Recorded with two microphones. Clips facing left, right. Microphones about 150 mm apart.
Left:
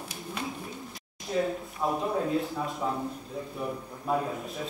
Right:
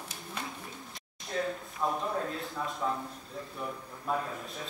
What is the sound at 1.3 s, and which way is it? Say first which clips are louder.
A man's voice: left 5 dB; 10° left (ahead or behind).